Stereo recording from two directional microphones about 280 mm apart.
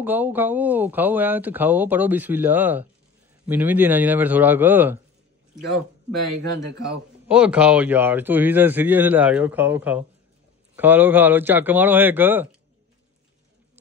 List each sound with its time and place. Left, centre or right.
0.0 s speech: centre
6.6 s speech: right
7.2 s speech: centre